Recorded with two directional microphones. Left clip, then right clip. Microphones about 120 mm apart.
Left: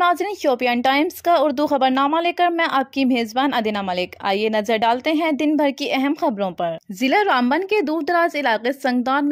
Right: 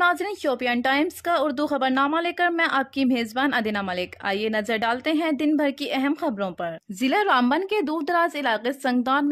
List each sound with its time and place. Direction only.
0.0 s a woman's voice: 25° left (ahead or behind)